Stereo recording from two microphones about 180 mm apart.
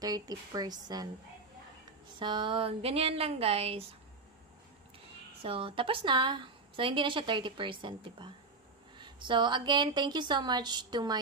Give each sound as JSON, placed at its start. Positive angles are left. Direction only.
{"t": 0.0, "sound": "a woman's voice", "side_deg": -20}
{"t": 2.1, "sound": "speech", "side_deg": -25}
{"t": 5.4, "sound": "a woman's voice", "side_deg": -30}